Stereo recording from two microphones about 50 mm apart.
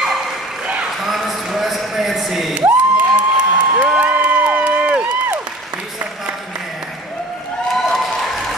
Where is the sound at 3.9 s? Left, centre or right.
Right.